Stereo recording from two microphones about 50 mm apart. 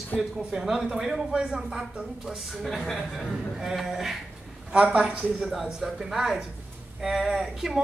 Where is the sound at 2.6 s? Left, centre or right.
Centre.